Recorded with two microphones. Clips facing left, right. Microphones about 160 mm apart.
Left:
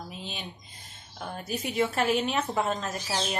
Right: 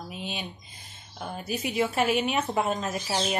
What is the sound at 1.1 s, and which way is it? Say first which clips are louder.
A woman's voice: right 1 dB; 10° right (ahead or behind).